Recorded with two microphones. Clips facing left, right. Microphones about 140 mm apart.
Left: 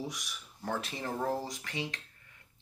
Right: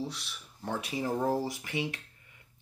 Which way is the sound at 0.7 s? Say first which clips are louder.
Right 3 dB; 5° right (ahead or behind).